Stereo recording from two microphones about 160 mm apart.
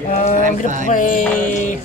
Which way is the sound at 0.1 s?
45° left (ahead or behind).